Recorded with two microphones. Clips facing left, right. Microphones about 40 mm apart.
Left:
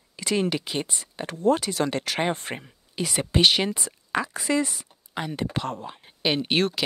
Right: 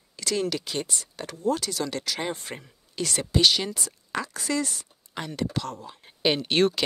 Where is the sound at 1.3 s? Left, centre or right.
Left.